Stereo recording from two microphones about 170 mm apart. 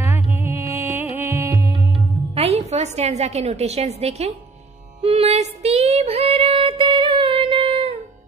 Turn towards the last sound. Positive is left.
turn(degrees=-35)  # may be behind; listen again after turning